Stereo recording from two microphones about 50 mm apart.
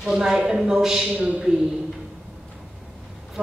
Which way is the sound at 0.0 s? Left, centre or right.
Centre.